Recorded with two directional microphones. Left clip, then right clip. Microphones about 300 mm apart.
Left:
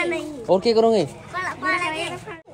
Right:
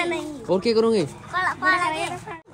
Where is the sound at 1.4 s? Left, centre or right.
Right.